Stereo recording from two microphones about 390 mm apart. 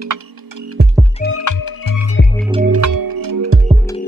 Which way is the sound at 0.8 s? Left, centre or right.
Right.